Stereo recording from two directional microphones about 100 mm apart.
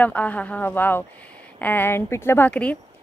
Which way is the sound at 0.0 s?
15° left (ahead or behind).